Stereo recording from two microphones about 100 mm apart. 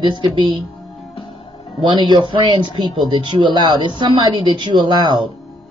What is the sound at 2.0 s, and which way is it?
Speech, 50° right (ahead or behind).